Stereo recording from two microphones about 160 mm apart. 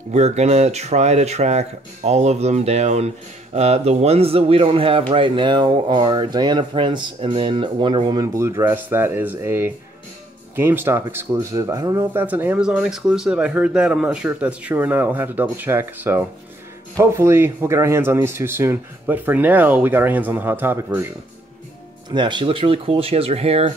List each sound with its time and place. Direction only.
0.1 s a man's voice: 45° right (ahead or behind); by 21.1 s 15° right (ahead or behind)
22.1 s a man's voice: 30° right (ahead or behind)